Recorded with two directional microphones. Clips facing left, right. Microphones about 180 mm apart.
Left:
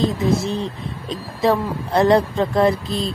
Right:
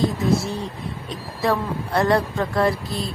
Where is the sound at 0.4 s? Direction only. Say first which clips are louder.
Left 4 dB; 20° left (ahead or behind).